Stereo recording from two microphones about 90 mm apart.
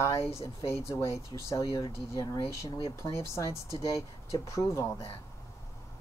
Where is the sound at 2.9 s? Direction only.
35° left (ahead or behind).